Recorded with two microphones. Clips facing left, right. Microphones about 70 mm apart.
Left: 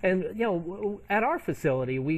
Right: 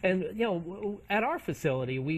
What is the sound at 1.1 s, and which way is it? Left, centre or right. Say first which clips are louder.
Speech: left 3 dB; left.